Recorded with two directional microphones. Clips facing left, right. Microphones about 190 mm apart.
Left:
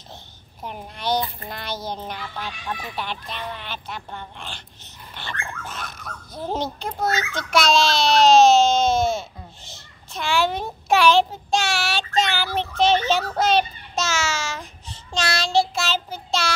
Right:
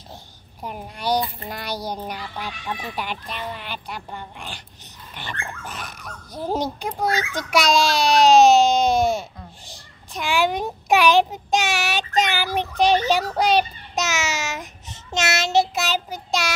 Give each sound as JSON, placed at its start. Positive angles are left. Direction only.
{"t": 0.6, "sound": "a woman's voice", "side_deg": -5}
{"t": 15.1, "sound": "child singing", "side_deg": -20}